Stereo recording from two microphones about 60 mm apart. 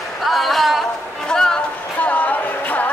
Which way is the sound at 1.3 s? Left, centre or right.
Centre.